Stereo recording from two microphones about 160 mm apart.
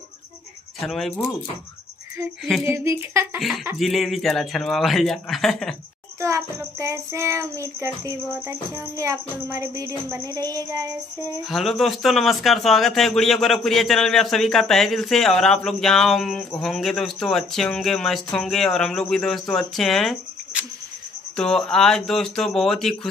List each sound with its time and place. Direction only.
0.7 s a man's voice: centre (ahead or behind)
2.6 s child singing: 15° right (ahead or behind)
3.3 s a man's voice: centre (ahead or behind)
6.2 s child singing: 20° right (ahead or behind)
11.4 s a man's voice: centre (ahead or behind)